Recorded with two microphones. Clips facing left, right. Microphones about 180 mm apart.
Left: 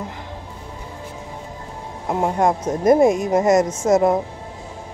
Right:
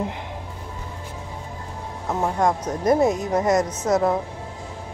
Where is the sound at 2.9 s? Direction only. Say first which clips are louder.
Left 5 dB; 10° left (ahead or behind).